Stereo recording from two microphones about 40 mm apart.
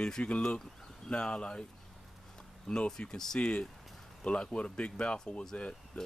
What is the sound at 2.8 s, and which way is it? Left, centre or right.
Speech, left.